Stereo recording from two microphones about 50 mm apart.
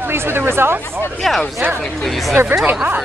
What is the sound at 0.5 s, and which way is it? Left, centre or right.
Speech, right.